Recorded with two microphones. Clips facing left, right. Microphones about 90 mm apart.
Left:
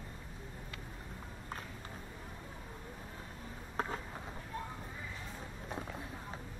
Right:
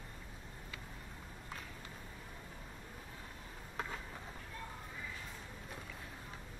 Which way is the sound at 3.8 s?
35° left (ahead or behind).